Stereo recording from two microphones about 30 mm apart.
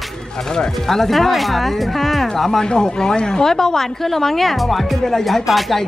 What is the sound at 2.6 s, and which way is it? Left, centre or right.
Speech, left.